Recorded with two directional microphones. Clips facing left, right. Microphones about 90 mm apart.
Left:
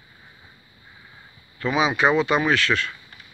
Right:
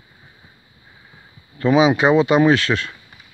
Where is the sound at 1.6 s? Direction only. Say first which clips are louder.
Right 6 dB; 35° right (ahead or behind).